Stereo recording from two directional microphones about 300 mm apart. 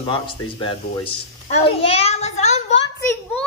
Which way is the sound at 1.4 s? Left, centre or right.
Left.